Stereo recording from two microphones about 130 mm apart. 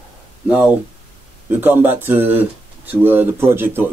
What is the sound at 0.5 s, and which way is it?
Speech, 10° right (ahead or behind).